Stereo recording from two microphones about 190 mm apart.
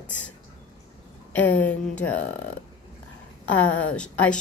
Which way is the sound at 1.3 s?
10° left (ahead or behind).